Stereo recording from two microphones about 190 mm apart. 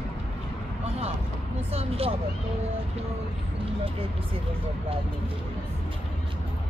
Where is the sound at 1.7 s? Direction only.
30° right (ahead or behind).